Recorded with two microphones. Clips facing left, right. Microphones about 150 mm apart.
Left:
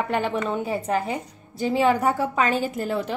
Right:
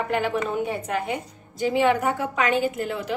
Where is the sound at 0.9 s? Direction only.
35° left (ahead or behind).